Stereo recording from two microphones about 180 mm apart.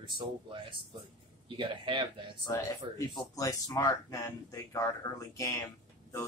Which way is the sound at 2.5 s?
20° left (ahead or behind).